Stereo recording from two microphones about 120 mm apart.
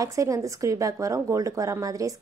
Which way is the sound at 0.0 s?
25° right (ahead or behind).